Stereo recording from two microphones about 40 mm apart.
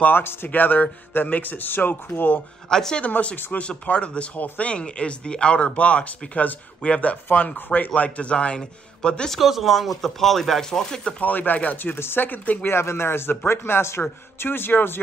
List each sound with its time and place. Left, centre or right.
0.1 s speech: left
0.5 s speech: left
2.7 s speech: centre
3.5 s speech: left
4.7 s speech: left
8.2 s speech: left
9.3 s speech: centre
11.1 s speech: left
11.8 s speech: left
12.6 s speech: left
14.4 s speech: left